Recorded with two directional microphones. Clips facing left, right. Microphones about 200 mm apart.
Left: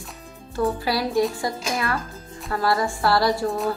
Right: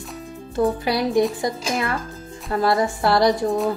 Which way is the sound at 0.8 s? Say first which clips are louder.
Right 3 dB; 20° right (ahead or behind).